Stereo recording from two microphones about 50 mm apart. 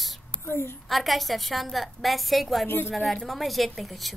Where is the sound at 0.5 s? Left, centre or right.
Left.